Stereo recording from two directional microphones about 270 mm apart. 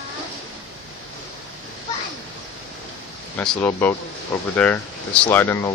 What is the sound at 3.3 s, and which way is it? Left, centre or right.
Speech, centre.